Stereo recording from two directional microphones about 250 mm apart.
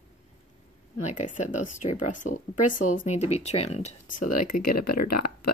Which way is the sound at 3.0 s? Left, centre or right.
Left.